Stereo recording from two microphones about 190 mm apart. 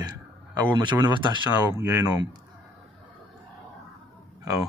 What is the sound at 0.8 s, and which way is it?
Speech, 25° right (ahead or behind).